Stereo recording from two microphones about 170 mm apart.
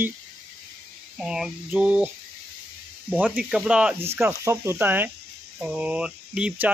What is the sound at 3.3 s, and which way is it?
Speech, 5° right (ahead or behind).